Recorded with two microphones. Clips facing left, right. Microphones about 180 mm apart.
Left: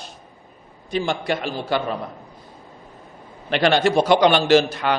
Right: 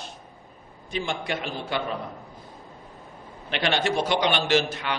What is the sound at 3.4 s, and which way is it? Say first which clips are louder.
A man's voice: left 7 dB; 40° left (ahead or behind).